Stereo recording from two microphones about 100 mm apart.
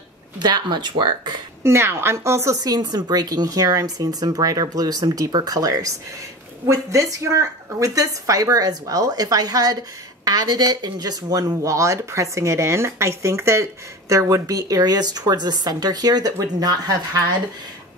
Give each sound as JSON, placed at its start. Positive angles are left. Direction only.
{"t": 0.4, "sound": "speech", "side_deg": -45}
{"t": 1.6, "sound": "a woman's voice", "side_deg": -25}
{"t": 2.5, "sound": "speech", "side_deg": -40}